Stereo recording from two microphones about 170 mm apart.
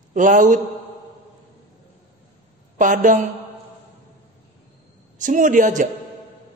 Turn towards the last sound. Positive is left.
turn(degrees=-50)  # may be behind; listen again after turning